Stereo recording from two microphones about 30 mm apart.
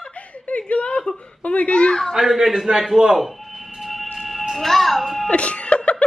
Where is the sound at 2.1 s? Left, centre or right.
Centre.